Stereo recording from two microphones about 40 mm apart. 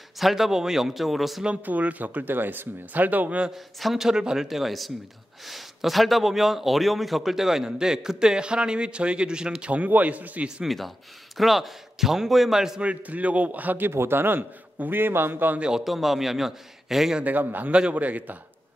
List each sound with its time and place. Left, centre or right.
0.2 s a man's voice: centre
1.6 s speech: right
3.5 s a man's voice: centre
4.2 s a man's voice: centre
4.5 s a man's voice: centre; by 9.7 s right
9.7 s a man's voice: right
11.3 s a man's voice: centre
12.8 s a man's voice: right
13.8 s a man's voice: right
15.8 s a man's voice: centre
17.2 s speech: right
17.6 s a man's voice: right
17.9 s a man's voice: right